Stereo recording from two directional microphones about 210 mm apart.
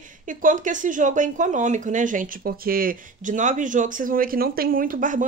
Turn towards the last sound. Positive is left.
turn(degrees=-40)  # may be behind; listen again after turning